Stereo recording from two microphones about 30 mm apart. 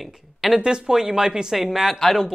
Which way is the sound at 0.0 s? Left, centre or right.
Centre.